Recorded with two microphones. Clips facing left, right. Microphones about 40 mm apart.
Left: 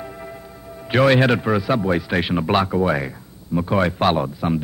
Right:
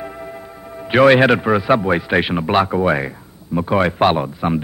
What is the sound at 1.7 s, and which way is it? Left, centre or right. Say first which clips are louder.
A man's voice: right 4 dB; right.